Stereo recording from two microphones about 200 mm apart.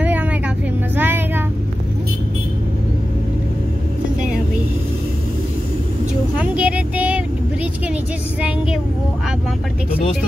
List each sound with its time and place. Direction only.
0.0 s vehicle: 5° right (ahead or behind)
6.3 s child singing: 5° right (ahead or behind)
8.4 s vehicle: 5° right (ahead or behind)